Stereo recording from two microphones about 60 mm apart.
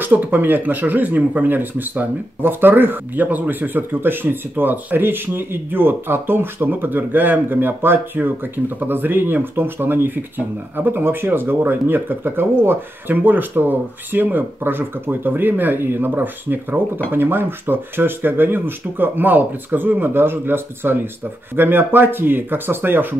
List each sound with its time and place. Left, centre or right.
0.0 s speech: right